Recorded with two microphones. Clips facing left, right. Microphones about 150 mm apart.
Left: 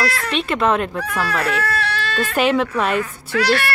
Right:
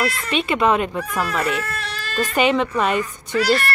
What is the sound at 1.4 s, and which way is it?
Baby cry, 70° left (ahead or behind).